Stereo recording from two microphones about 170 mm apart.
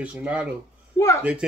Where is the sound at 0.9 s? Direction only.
15° left (ahead or behind).